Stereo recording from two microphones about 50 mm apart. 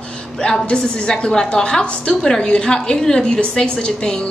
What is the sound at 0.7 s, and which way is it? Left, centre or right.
A woman's voice, centre.